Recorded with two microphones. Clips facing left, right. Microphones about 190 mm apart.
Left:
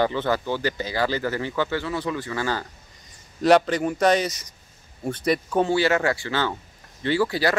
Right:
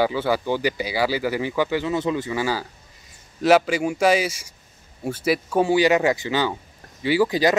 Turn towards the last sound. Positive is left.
turn(degrees=-15)  # may be behind; listen again after turning